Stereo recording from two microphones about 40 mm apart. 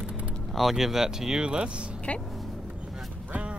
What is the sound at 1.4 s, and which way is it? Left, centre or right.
Speech, right.